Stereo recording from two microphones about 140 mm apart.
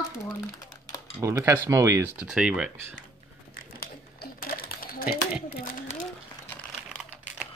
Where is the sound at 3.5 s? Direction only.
90° left.